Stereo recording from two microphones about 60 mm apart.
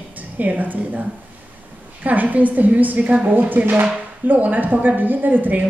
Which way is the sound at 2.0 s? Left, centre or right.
Right.